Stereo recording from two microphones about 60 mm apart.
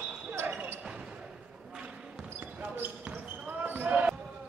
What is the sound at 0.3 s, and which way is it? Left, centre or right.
Basketball bounce, right.